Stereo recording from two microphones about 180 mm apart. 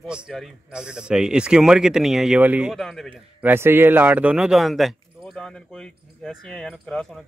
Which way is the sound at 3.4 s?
15° right (ahead or behind).